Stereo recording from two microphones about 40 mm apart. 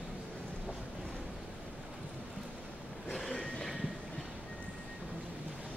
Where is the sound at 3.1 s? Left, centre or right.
Centre.